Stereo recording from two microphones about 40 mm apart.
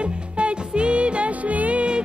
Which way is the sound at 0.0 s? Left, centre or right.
Right.